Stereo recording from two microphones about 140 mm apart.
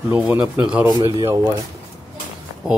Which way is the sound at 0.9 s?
30° right (ahead or behind).